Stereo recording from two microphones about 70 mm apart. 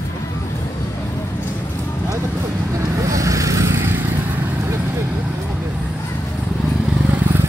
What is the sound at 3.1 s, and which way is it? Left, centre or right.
Vehicle, right.